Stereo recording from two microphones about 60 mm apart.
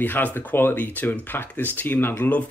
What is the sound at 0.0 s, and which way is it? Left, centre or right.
Speech, left.